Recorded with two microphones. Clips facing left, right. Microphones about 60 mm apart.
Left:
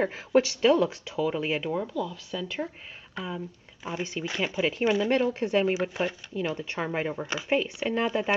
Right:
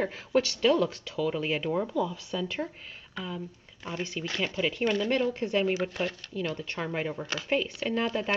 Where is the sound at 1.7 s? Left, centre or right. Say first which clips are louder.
Right 1 dB; centre.